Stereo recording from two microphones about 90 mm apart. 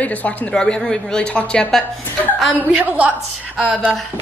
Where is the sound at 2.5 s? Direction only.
20° right (ahead or behind).